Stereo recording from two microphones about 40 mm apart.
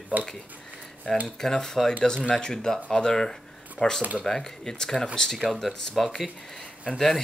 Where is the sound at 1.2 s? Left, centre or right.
Centre.